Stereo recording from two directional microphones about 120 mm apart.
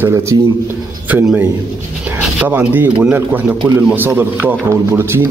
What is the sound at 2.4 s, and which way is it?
Speech, 15° right (ahead or behind).